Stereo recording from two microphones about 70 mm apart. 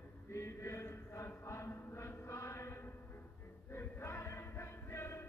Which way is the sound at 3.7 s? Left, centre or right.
Left.